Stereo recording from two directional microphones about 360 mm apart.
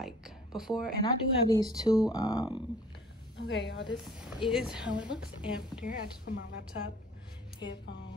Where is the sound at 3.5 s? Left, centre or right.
Left.